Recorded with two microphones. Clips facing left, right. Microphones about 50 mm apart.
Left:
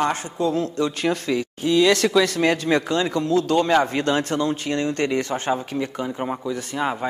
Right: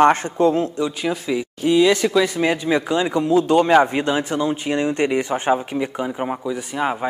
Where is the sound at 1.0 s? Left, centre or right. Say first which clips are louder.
Even; centre.